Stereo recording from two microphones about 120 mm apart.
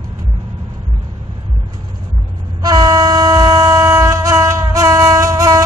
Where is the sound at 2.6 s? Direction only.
30° right (ahead or behind).